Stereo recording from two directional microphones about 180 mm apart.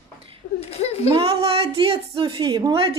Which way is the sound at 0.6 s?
35° left (ahead or behind).